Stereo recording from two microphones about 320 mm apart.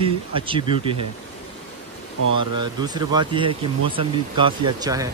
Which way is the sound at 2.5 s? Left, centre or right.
Centre.